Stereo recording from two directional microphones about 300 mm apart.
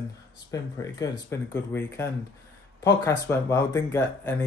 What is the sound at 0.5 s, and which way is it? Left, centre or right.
Speech, centre.